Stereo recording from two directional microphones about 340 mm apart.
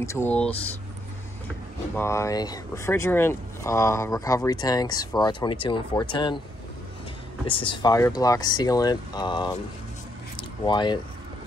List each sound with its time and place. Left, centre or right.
0.0 s speech: centre
2.0 s speech: centre
7.4 s speech: centre
10.3 s a sound: centre